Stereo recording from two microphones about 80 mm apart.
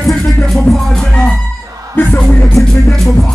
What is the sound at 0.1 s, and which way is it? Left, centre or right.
Music, centre.